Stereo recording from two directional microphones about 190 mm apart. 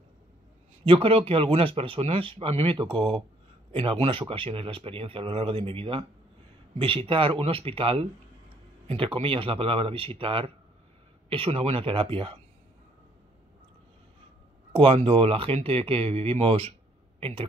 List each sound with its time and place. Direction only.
0.8 s speech: 30° right (ahead or behind)
14.7 s speech: 30° right (ahead or behind)